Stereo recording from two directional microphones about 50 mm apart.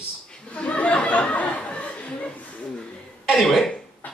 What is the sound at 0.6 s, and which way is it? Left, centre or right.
Chatter, left.